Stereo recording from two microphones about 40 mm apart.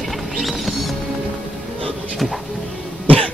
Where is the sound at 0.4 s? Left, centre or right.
Centre.